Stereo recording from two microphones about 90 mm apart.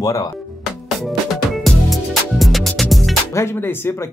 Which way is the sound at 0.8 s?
Centre (ahead or behind).